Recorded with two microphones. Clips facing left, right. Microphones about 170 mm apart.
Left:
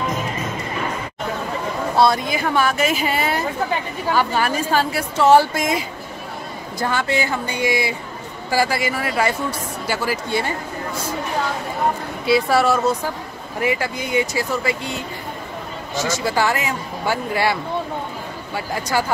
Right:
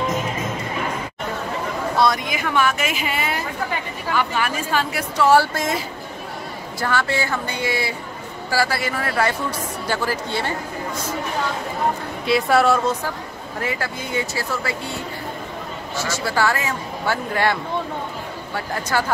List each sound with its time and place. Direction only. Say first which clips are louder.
2.0 s speech: left 3 dB; 30° left (ahead or behind)
5.1 s speech: left 2 dB; 20° left (ahead or behind)
6.8 s speech: left 1 dB; 20° left (ahead or behind)
12.3 s speech: even; centre (ahead or behind)
13.6 s speech: left 5 dB; 15° left (ahead or behind)
16.0 s speech: left 2 dB; 15° left (ahead or behind)